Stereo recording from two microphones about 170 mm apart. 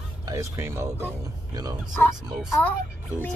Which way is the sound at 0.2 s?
15° right (ahead or behind).